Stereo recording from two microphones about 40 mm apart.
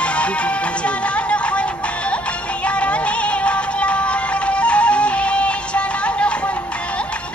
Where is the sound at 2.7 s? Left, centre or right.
Left.